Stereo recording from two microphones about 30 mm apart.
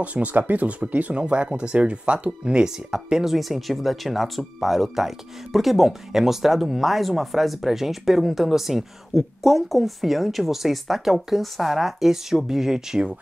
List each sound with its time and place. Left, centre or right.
0.0 s speech: right
0.4 s speech: right
0.7 s speech: right
1.2 s speech: right
2.9 s speech: centre
3.3 s speech: centre